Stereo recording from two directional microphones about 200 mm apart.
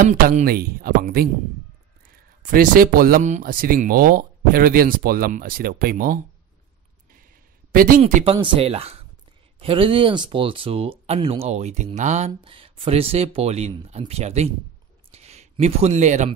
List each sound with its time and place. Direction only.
0.0 s speech: 40° right (ahead or behind)
8.0 s speech: 30° right (ahead or behind)
15.0 s a sound: 30° right (ahead or behind)